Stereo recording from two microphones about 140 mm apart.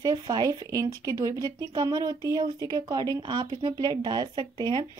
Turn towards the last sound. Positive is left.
turn(degrees=-35)  # may be behind; listen again after turning